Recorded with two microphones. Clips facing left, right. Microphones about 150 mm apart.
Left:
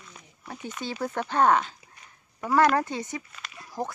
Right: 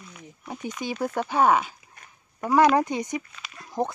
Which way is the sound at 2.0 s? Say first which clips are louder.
Right 2 dB; 50° right (ahead or behind).